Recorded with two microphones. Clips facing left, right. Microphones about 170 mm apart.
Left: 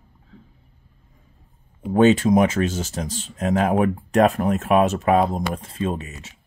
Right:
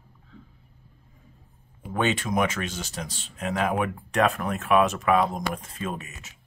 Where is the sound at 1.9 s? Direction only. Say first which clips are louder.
Left 11 dB; 40° left (ahead or behind).